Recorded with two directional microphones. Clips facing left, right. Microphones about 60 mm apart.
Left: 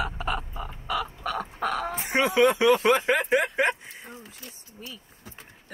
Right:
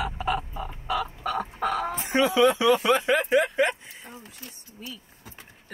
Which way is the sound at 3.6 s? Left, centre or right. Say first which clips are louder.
Even; centre.